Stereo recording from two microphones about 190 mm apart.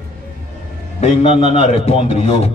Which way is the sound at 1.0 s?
30° left (ahead or behind).